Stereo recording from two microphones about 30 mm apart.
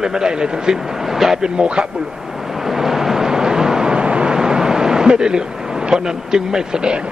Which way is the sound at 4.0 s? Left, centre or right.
Right.